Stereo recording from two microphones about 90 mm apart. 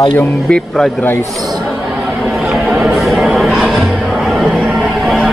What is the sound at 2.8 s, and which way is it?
Music, centre (ahead or behind).